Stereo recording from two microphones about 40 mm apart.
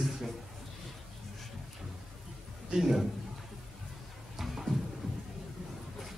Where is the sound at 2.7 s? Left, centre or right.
Centre.